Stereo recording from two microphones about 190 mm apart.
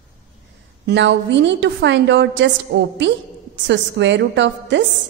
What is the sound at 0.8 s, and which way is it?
A woman's voice, 70° right (ahead or behind).